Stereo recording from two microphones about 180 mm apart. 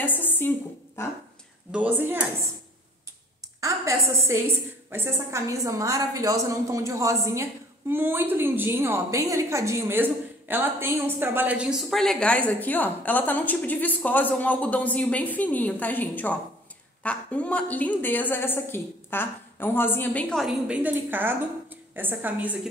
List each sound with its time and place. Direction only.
0.0 s a sound: 10° left (ahead or behind)
1.0 s a woman's voice: 15° left (ahead or behind)
1.7 s a woman's voice: 10° right (ahead or behind)
3.6 s a woman's voice: 15° right (ahead or behind)